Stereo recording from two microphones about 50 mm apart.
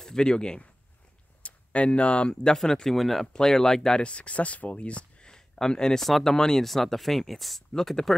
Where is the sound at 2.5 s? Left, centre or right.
Centre.